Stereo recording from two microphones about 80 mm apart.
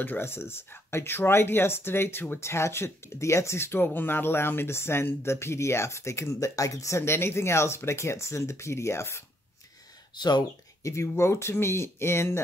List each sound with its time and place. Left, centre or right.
0.0 s speech: left
10.1 s speech: left
10.8 s speech: left